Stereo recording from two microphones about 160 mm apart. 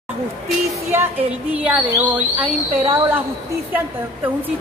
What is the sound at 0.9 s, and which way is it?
A woman's voice, 10° right (ahead or behind).